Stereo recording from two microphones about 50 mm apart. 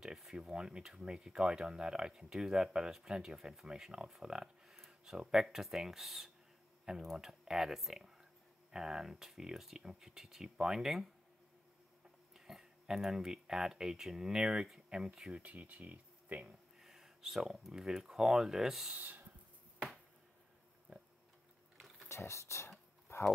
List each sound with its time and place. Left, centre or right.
0.0 s speech: centre
12.4 s speech: centre
15.3 s speech: right
16.8 s speech: centre
21.7 s mechanisms: centre
22.1 s speech: left
23.0 s clip-clop: left